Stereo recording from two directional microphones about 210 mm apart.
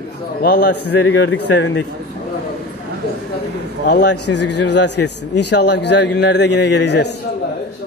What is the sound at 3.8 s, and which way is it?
A man's voice, 55° left (ahead or behind).